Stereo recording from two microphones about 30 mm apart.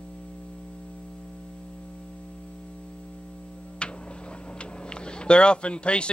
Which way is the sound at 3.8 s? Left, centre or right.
Left.